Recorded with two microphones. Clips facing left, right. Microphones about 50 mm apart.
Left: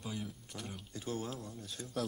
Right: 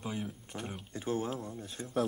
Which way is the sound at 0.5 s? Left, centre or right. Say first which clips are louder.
Right 5 dB; right.